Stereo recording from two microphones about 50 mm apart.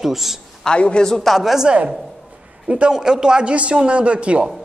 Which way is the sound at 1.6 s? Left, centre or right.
Right.